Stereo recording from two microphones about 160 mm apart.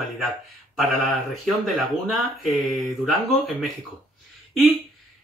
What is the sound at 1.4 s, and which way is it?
Speech, centre (ahead or behind).